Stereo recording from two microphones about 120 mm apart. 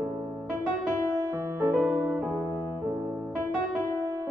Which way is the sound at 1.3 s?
20° right (ahead or behind).